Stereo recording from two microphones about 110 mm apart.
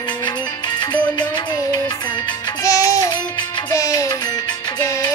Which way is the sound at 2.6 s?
30° left (ahead or behind).